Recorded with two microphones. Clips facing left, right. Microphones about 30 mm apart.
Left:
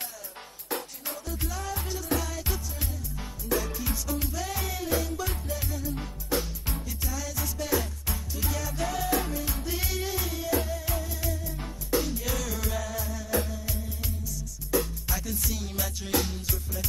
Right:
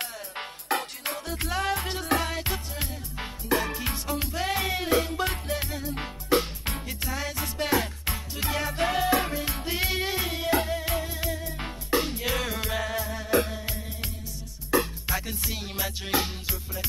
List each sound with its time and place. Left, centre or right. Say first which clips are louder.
0.7 s music: right 5 dB; right